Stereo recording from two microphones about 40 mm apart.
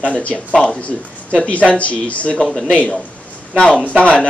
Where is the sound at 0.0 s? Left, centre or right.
Left.